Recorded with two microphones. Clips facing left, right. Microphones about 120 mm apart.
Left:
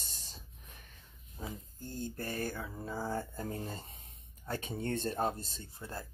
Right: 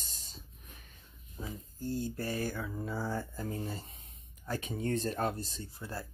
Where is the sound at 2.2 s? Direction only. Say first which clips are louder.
Right 2 dB; 50° left (ahead or behind).